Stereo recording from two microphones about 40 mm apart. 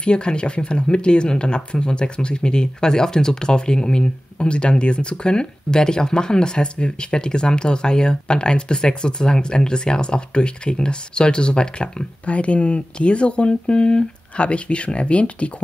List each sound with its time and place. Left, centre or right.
0.0 s speech: left